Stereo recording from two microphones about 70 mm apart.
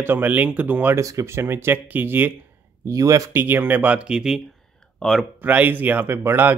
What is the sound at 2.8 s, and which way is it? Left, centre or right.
Speech, right.